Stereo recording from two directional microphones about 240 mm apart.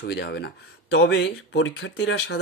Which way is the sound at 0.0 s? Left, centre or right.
Left.